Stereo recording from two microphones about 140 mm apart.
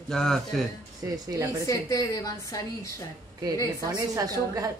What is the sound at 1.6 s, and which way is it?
A woman's voice, 25° left (ahead or behind).